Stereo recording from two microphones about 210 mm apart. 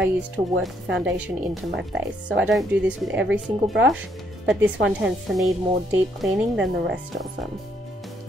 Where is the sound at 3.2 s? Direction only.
60° right (ahead or behind).